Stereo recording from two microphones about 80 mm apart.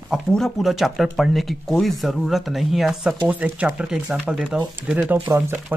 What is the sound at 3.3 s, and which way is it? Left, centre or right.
Speech, right.